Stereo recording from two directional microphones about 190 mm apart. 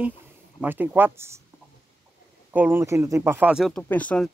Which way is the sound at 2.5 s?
10° right (ahead or behind).